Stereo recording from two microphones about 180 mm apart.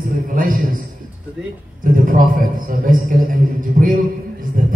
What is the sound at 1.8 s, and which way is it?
A man's voice, 50° right (ahead or behind).